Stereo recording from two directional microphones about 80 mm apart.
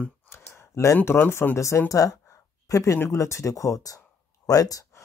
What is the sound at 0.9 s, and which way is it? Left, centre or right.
Speech, left.